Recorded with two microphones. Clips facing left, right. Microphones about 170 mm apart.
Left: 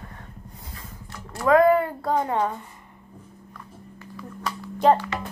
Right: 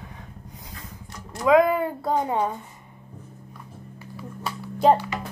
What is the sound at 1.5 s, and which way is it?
Speech, 10° right (ahead or behind).